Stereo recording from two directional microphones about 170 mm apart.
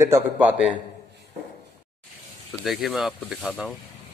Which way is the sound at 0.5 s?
5° right (ahead or behind).